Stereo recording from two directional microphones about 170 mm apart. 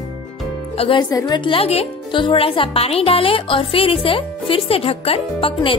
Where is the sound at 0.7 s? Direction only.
30° left (ahead or behind).